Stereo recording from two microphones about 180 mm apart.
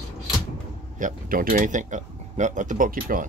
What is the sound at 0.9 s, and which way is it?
Speech, 50° right (ahead or behind).